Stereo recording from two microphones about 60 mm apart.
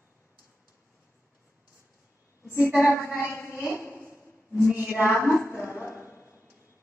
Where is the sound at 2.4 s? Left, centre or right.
Left.